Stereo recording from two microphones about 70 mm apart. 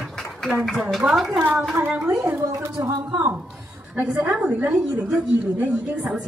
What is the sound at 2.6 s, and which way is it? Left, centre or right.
Speech, right.